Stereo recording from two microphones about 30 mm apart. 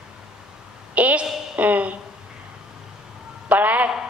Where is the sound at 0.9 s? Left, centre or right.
Right.